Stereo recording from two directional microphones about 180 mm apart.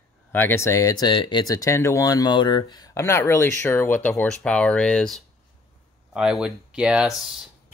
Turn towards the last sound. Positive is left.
turn(degrees=0)  # may be behind; listen again after turning